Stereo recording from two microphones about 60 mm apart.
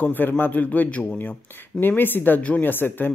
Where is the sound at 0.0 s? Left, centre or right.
Left.